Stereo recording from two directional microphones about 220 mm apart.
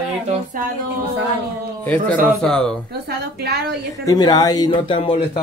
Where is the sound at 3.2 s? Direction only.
50° right (ahead or behind).